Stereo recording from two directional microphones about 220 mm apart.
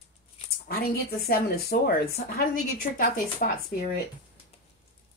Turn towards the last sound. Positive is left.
turn(degrees=40)  # may be behind; listen again after turning